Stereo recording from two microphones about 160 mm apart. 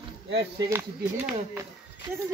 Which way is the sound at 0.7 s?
10° right (ahead or behind).